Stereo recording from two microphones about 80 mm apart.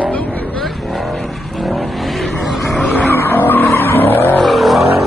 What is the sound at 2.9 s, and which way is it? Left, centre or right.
Vehicle, left.